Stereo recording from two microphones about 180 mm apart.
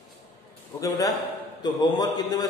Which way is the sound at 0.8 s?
20° left (ahead or behind).